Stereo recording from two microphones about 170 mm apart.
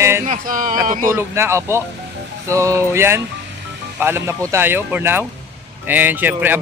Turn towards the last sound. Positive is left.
turn(degrees=-10)  # may be behind; listen again after turning